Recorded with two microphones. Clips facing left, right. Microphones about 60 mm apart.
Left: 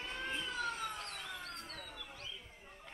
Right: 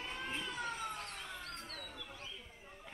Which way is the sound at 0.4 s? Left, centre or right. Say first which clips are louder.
Left 2 dB; right.